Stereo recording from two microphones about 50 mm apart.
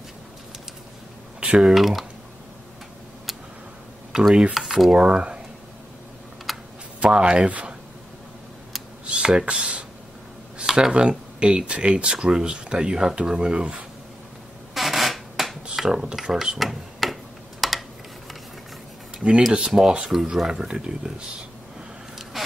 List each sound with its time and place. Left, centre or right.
1.4 s typing: right
1.7 s speech: centre
4.1 s cutlery: centre
4.6 s a sound: centre
4.9 s speech: centre
6.5 s computer keyboard: centre
7.0 s speech: right
9.0 s a sound: centre
10.6 s speech: centre
14.7 s a sound: centre
15.7 s speech: centre
16.5 s a sound: centre
20.1 s speech: centre